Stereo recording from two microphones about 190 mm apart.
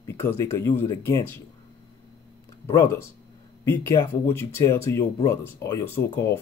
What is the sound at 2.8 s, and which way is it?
Speech, 15° left (ahead or behind).